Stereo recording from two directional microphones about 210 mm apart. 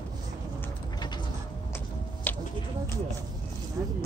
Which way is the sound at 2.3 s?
10° left (ahead or behind).